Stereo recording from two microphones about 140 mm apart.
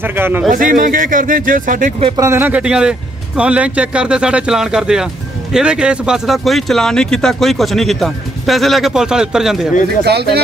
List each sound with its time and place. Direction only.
0.0 s speech: 15° right (ahead or behind)
0.5 s speech: 75° right (ahead or behind)
2.1 s speech: 20° right (ahead or behind); by 9.7 s 5° right (ahead or behind)